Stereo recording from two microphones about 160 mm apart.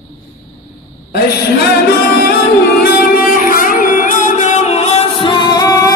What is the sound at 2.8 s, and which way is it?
Music, 60° left (ahead or behind).